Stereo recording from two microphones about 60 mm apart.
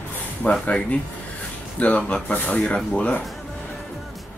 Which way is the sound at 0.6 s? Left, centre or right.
Left.